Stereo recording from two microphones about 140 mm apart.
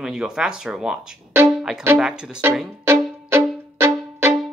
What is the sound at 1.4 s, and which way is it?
Music, 5° right (ahead or behind).